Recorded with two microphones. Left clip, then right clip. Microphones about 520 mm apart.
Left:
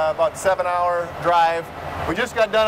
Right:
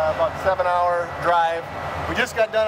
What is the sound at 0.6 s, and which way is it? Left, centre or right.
Speech, left.